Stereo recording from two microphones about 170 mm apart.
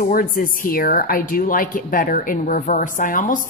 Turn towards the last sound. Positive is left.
turn(degrees=50)  # may be behind; listen again after turning